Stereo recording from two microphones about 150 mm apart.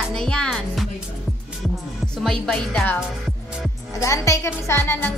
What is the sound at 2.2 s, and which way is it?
Speech, centre (ahead or behind).